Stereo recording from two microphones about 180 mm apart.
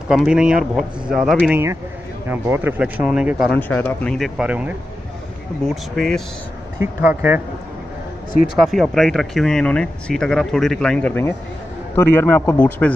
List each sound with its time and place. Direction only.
0.1 s speech: 5° right (ahead or behind)
3.5 s speech: 10° left (ahead or behind)
7.1 s speech: 10° right (ahead or behind)
8.5 s a man's voice: centre (ahead or behind)